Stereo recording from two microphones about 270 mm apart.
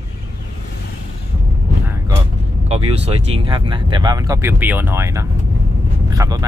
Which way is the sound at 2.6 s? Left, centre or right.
Right.